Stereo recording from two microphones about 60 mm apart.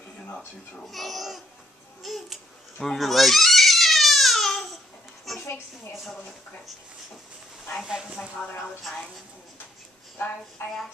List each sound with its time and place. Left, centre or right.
0.8 s speech: centre
2.8 s goat: centre
5.3 s a sound: centre
7.8 s speech: centre
10.1 s a woman's voice: left